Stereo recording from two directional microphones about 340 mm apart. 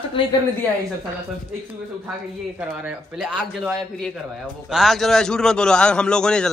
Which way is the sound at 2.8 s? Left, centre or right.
Centre.